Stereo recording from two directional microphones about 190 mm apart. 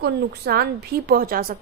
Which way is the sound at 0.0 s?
55° right (ahead or behind).